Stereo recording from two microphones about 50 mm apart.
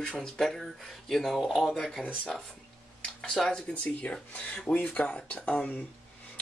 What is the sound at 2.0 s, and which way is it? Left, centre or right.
Speech, left.